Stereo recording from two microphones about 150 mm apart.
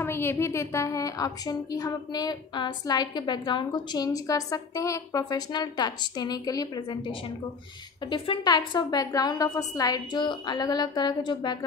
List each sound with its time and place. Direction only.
0.0 s a woman's voice: 15° left (ahead or behind)